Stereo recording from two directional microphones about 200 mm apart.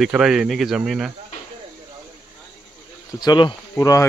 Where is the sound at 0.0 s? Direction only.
5° right (ahead or behind).